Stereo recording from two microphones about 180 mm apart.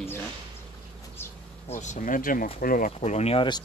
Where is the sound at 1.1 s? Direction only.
15° left (ahead or behind).